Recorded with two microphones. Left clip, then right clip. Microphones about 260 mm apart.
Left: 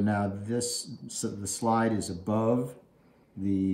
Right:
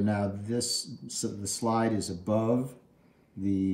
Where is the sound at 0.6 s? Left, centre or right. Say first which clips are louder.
Right 3 dB; centre.